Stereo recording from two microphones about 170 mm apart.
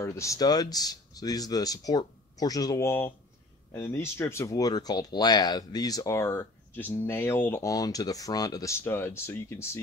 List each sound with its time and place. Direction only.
0.0 s speech: 20° left (ahead or behind)